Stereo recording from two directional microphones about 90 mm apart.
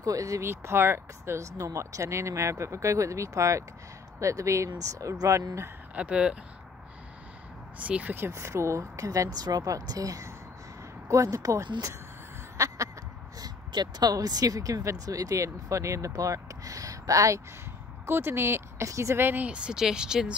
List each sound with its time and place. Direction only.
0.0 s speech: 40° right (ahead or behind)
5.9 s speech: 10° right (ahead or behind)
7.8 s speech: 15° right (ahead or behind)
8.3 s speech: 30° right (ahead or behind)
11.6 s speech: 50° right (ahead or behind)
12.5 s a sound: 35° right (ahead or behind)
13.4 s speech: 55° right (ahead or behind); by 17.4 s 35° right (ahead or behind)
18.0 s speech: 25° right (ahead or behind); by 20.3 s 10° right (ahead or behind)